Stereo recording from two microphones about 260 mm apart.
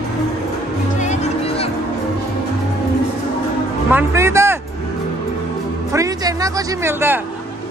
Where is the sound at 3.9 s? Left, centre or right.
Centre.